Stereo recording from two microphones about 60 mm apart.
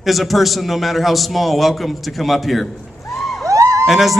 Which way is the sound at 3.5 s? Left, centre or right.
Right.